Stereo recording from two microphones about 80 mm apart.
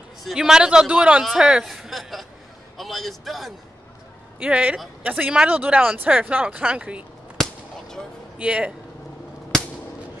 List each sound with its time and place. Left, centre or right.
0.2 s speech: centre
1.7 s a sound: centre
2.8 s a man's voice: centre
4.4 s speech: centre
7.4 s fireworks: centre
8.4 s speech: centre